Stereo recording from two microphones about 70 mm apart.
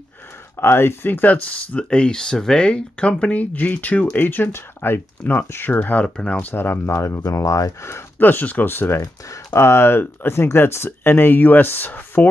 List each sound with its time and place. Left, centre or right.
0.6 s speech: left
6.0 s speech: centre
6.4 s speech: left
8.2 s speech: left